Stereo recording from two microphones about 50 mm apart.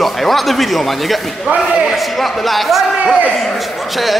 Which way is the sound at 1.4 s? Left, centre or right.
Centre.